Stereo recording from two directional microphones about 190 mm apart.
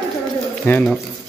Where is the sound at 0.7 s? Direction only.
5° left (ahead or behind).